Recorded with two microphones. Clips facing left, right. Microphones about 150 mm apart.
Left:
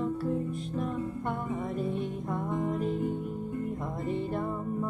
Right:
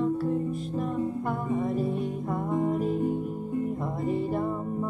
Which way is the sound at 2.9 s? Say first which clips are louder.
Right 4 dB; 40° right (ahead or behind).